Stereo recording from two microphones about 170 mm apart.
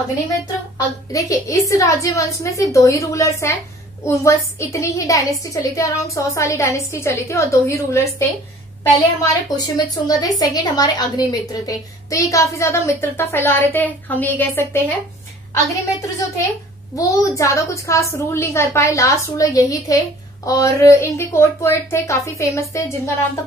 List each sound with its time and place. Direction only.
0.7 s a woman's voice: 20° left (ahead or behind)
9.6 s a woman's voice: 20° left (ahead or behind)